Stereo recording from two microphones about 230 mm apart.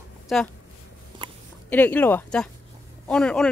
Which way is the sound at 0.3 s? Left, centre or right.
Centre.